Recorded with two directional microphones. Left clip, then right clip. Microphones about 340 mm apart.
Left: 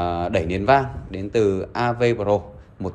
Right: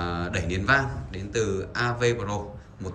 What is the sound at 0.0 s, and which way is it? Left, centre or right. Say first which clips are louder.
Speech: left 8 dB; centre.